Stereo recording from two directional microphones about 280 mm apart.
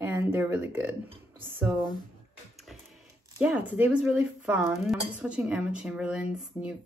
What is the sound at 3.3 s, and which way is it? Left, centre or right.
Speech, centre.